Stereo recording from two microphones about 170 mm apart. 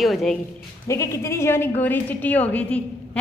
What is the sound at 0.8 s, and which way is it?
A woman's voice, 15° left (ahead or behind).